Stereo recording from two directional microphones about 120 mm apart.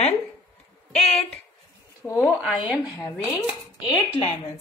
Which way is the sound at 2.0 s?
25° left (ahead or behind).